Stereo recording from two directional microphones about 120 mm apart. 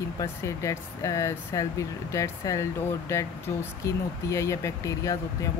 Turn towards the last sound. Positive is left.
turn(degrees=25)  # may be behind; listen again after turning